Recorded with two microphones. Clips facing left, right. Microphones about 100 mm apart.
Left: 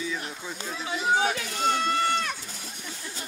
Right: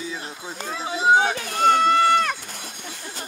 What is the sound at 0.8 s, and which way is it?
Speech, 30° right (ahead or behind).